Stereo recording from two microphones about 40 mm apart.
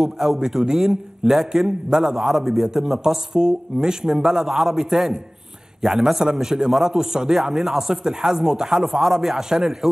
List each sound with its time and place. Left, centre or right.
0.0 s speech: centre
1.7 s a man's voice: centre
2.1 s a man's voice: centre